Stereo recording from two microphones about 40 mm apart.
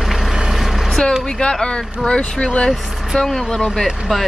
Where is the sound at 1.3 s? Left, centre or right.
Centre.